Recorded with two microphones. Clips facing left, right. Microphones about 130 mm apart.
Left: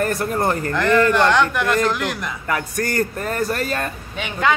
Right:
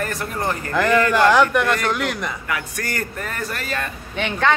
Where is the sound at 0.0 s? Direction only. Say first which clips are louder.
Left 5 dB; 40° left (ahead or behind).